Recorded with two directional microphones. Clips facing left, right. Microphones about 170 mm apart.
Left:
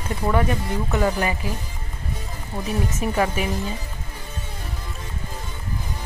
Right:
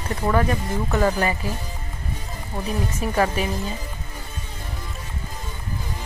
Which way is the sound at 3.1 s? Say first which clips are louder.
Right 2 dB; 10° left (ahead or behind).